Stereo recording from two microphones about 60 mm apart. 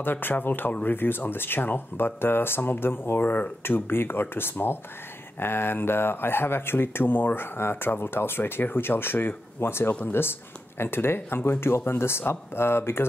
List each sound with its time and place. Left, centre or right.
0.0 s speech: left